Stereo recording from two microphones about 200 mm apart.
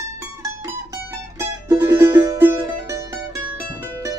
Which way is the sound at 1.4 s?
15° right (ahead or behind).